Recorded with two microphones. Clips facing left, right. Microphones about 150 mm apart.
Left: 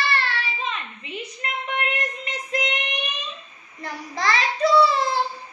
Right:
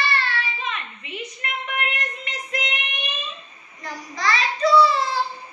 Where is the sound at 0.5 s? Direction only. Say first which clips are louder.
Left 1 dB; 30° left (ahead or behind).